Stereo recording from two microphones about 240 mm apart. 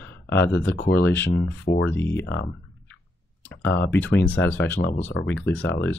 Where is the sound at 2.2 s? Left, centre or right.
Left.